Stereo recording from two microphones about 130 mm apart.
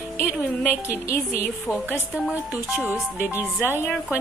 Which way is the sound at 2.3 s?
15° right (ahead or behind).